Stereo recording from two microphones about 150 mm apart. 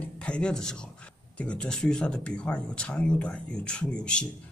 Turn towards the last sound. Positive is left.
turn(degrees=5)  # may be behind; listen again after turning